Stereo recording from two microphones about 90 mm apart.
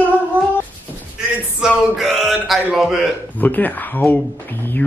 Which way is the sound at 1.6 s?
5° right (ahead or behind).